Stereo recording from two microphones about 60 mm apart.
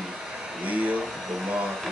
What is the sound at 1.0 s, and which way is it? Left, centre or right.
Speech, centre.